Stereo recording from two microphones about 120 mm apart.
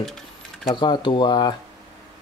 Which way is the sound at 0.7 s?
40° left (ahead or behind).